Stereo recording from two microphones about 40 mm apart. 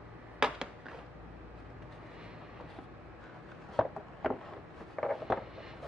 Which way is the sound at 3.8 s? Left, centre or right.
Centre.